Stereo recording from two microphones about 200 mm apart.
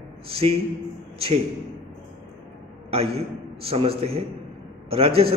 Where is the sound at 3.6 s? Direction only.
30° right (ahead or behind).